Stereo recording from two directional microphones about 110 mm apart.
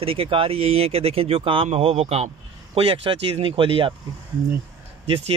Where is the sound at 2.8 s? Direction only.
55° right (ahead or behind).